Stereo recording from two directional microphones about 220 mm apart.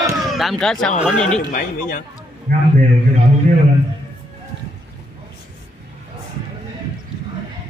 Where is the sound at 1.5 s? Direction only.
40° left (ahead or behind).